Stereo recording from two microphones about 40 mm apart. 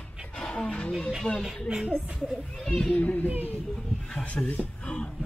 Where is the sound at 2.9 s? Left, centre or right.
Left.